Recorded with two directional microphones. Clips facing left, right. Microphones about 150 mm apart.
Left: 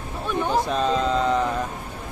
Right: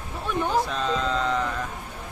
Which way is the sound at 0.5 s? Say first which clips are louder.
Left 5 dB; 15° left (ahead or behind).